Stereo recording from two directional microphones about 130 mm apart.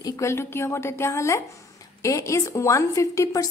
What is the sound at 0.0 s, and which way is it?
A woman's voice, 20° left (ahead or behind).